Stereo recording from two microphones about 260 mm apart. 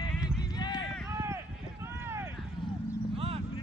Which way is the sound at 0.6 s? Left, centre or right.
Centre.